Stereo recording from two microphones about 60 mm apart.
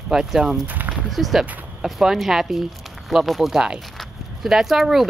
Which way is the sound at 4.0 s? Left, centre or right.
Centre.